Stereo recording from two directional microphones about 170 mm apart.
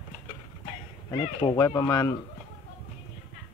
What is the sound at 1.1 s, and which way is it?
Speech, 25° left (ahead or behind).